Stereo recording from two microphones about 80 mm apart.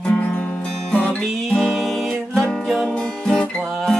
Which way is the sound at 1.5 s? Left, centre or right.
Centre.